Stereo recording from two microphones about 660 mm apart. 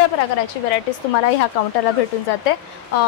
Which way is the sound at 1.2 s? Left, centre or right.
Left.